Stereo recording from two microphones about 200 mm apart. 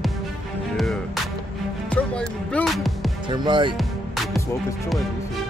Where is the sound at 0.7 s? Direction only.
Centre (ahead or behind).